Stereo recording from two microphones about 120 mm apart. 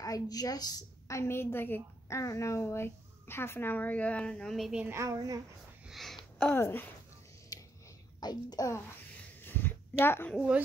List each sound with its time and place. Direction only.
0.0 s a woman's voice: 30° left (ahead or behind); by 4.8 s centre (ahead or behind)
4.8 s speech: 25° right (ahead or behind)
5.9 s a sound: centre (ahead or behind)
6.5 s speech: 20° left (ahead or behind)
8.2 s a child's voice: 35° left (ahead or behind)
9.4 s a sound: 15° left (ahead or behind)